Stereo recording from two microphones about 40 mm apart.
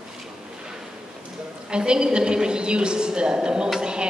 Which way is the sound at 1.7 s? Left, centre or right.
Right.